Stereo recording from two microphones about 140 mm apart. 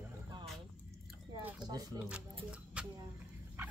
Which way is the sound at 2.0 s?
5° right (ahead or behind).